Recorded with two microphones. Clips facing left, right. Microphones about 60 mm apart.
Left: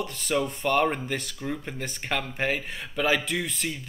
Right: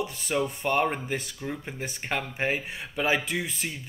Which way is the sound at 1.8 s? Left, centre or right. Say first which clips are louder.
Left 1 dB; right.